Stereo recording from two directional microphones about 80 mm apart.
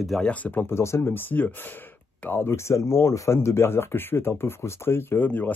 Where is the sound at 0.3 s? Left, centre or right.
Left.